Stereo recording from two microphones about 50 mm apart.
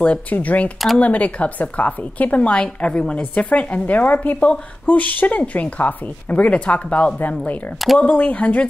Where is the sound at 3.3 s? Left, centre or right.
Left.